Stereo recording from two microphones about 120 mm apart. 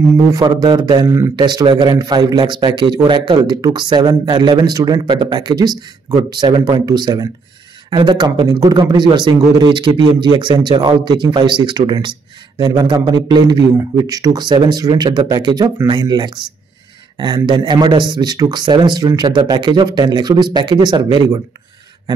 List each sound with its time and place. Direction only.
0.6 s a man's voice: 35° right (ahead or behind)
1.0 s speech: 20° right (ahead or behind)
1.3 s a man's voice: 40° right (ahead or behind)
17.5 s a man's voice: 35° right (ahead or behind)